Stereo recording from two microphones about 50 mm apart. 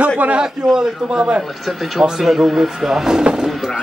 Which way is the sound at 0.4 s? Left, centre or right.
Centre.